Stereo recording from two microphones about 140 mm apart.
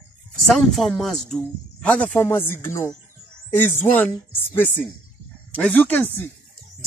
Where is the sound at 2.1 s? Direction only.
15° left (ahead or behind).